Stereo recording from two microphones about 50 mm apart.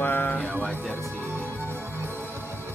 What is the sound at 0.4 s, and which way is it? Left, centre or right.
Music, left.